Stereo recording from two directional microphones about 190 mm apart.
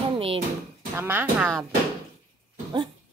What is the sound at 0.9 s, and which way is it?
Speech, 10° right (ahead or behind).